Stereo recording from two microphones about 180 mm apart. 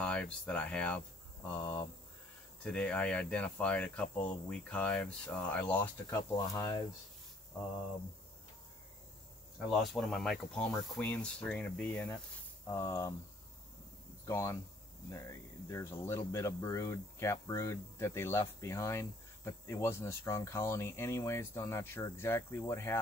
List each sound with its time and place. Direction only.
0.0 s speech: 5° left (ahead or behind)
9.7 s speech: centre (ahead or behind)
10.7 s speech: 15° left (ahead or behind)
14.2 s speech: 15° left (ahead or behind)